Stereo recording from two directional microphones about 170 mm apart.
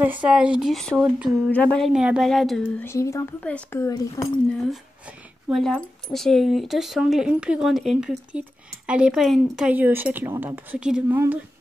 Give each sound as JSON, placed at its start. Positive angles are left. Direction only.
{"t": 0.0, "sound": "speech", "side_deg": -10}
{"t": 1.9, "sound": "speech", "side_deg": -5}
{"t": 2.8, "sound": "speech", "side_deg": 15}
{"t": 5.5, "sound": "speech", "side_deg": 5}